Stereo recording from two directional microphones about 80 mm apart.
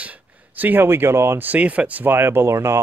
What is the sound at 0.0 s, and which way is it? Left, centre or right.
Speech, right.